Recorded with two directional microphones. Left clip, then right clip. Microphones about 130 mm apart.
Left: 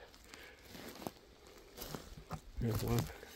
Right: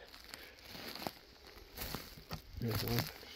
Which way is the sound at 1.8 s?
30° right (ahead or behind).